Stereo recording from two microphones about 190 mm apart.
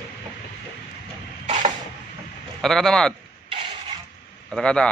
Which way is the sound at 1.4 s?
40° right (ahead or behind).